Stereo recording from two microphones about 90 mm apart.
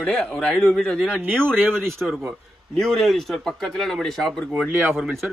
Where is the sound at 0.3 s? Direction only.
15° left (ahead or behind).